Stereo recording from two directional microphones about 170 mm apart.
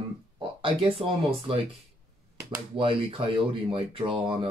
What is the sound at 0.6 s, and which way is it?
Speech, 30° right (ahead or behind).